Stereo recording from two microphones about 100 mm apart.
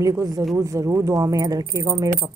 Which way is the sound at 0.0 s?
35° right (ahead or behind).